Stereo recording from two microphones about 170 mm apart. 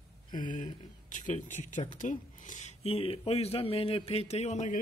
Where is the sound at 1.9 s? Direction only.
50° left (ahead or behind).